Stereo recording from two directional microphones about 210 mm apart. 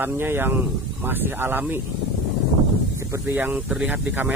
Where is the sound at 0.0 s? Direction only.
10° right (ahead or behind).